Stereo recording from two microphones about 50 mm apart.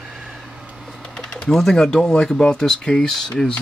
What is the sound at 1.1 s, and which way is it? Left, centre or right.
Speech, centre.